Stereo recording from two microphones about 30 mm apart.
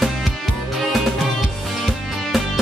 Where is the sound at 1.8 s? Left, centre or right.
Centre.